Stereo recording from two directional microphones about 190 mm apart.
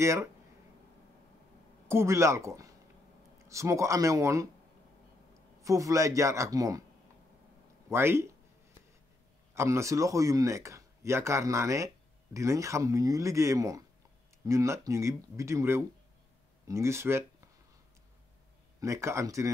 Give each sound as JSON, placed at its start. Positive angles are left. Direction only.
{"t": 0.0, "sound": "speech", "side_deg": -15}
{"t": 1.9, "sound": "speech", "side_deg": -15}
{"t": 5.6, "sound": "speech", "side_deg": -15}
{"t": 7.9, "sound": "speech", "side_deg": -10}
{"t": 9.5, "sound": "speech", "side_deg": -15}
{"t": 18.8, "sound": "speech", "side_deg": -15}